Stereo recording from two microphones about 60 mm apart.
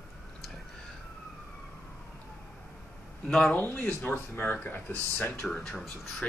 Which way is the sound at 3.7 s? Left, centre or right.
Left.